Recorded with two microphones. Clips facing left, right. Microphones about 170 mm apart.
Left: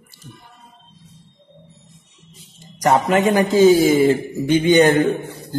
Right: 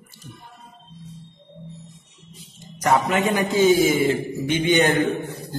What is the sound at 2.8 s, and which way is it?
A man's voice, 40° left (ahead or behind).